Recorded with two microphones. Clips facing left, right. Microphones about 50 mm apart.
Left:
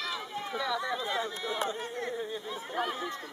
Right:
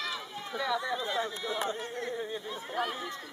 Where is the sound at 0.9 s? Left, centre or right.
Centre.